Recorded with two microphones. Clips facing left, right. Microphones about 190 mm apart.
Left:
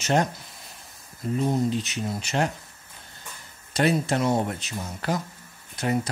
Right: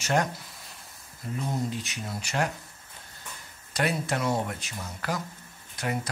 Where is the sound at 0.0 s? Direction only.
25° left (ahead or behind).